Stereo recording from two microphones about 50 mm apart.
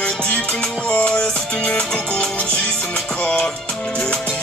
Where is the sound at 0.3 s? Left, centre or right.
Centre.